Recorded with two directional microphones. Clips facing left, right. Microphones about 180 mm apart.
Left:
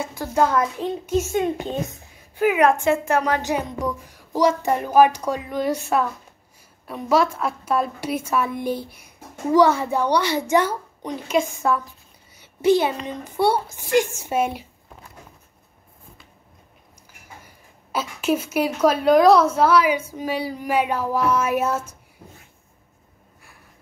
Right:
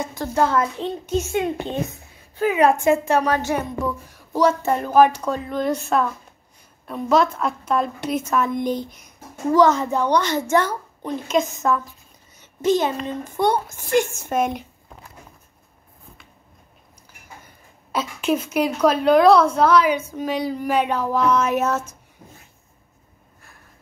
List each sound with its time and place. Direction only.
0.0 s a woman's voice: 10° left (ahead or behind)
2.5 s a woman's voice: 20° right (ahead or behind)
3.3 s a woman's voice: 15° left (ahead or behind)
17.9 s a woman's voice: 10° left (ahead or behind)